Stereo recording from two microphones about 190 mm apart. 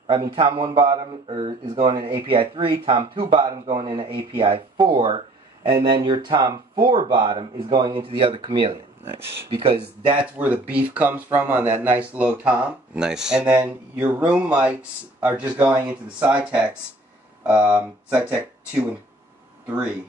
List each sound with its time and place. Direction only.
0.0 s speech: 25° right (ahead or behind)
10.2 s speech: 10° right (ahead or behind)